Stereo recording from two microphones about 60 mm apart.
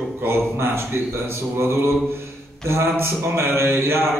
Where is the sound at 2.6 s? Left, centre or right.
Right.